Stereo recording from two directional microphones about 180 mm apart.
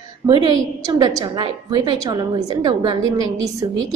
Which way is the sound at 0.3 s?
25° right (ahead or behind).